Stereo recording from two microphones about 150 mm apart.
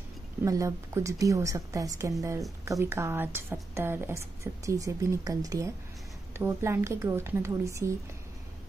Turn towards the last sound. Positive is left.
turn(degrees=-20)  # may be behind; listen again after turning